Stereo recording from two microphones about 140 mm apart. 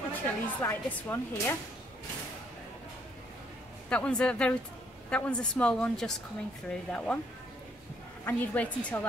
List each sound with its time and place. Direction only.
0.1 s speech: 15° left (ahead or behind)
3.9 s speech: 10° left (ahead or behind)
8.3 s speech: 10° left (ahead or behind)